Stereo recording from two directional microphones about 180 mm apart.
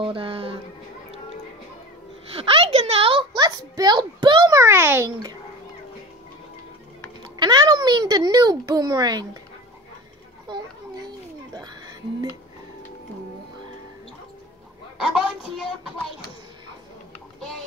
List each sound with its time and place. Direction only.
0.0 s a sound: 30° right (ahead or behind)
2.3 s speech: 30° right (ahead or behind); by 5.3 s 15° right (ahead or behind)
7.3 s a child's voice: 25° right (ahead or behind)
11.5 s music: 20° right (ahead or behind)
15.0 s speech: centre (ahead or behind)